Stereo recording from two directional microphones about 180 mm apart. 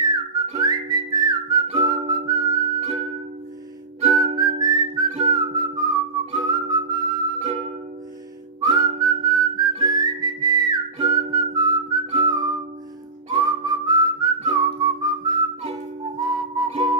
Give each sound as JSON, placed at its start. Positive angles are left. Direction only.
{"t": 0.0, "sound": "whistling", "side_deg": -20}
{"t": 4.0, "sound": "whistling", "side_deg": -20}
{"t": 7.3, "sound": "music", "side_deg": -35}
{"t": 8.6, "sound": "whistling", "side_deg": -20}